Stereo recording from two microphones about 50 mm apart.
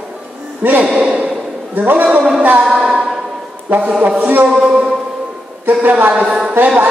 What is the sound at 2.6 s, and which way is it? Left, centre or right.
Music, centre.